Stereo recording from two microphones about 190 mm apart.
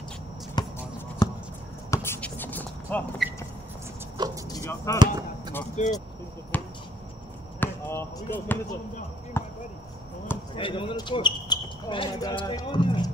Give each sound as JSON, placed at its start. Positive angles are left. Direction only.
{"t": 0.6, "sound": "basketball bounce", "side_deg": 20}
{"t": 1.2, "sound": "a sound", "side_deg": 20}
{"t": 4.5, "sound": "speech", "side_deg": 15}
{"t": 4.9, "sound": "speech", "side_deg": -20}
{"t": 5.8, "sound": "speech", "side_deg": 35}
{"t": 6.5, "sound": "basketball bounce", "side_deg": 10}
{"t": 7.6, "sound": "speech", "side_deg": 10}
{"t": 9.4, "sound": "basketball bounce", "side_deg": 10}
{"t": 10.5, "sound": "speech", "side_deg": 25}